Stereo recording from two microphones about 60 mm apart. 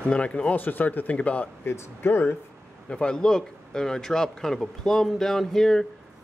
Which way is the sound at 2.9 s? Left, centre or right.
Centre.